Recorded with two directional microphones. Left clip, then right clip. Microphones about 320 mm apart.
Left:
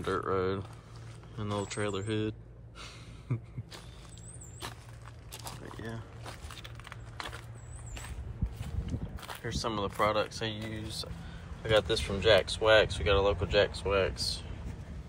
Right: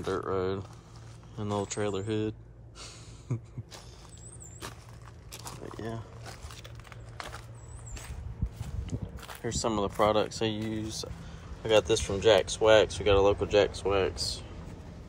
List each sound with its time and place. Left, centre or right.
0.0 s speech: centre
2.8 s a sound: centre
5.4 s biting: centre
6.8 s computer keyboard: centre
9.1 s a sound: centre
9.4 s speech: centre